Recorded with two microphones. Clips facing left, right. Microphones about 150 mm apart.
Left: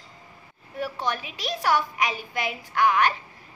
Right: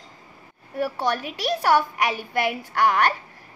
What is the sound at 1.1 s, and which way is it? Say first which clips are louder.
A woman's voice: right 6 dB; 55° right (ahead or behind).